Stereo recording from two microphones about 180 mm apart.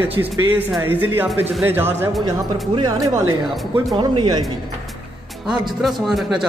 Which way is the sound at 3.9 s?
25° right (ahead or behind).